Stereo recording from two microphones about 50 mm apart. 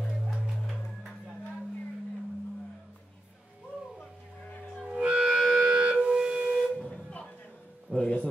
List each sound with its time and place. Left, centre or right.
0.6 s music: centre
4.8 s music: right
5.5 s siren: centre
7.9 s a sound: left